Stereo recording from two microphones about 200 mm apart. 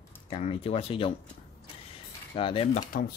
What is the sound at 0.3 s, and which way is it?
Speech, 30° left (ahead or behind).